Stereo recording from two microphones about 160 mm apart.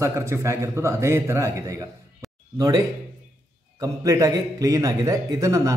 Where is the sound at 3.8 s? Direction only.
20° right (ahead or behind).